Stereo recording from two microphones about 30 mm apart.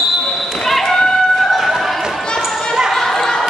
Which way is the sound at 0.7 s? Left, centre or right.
Centre.